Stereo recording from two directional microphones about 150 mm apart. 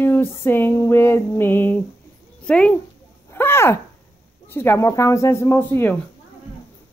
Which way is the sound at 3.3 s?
15° left (ahead or behind).